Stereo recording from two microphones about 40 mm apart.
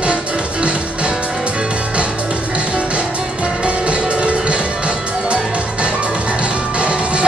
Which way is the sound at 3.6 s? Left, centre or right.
Right.